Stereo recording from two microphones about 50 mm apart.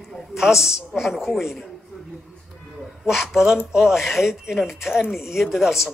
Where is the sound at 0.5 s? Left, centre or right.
Left.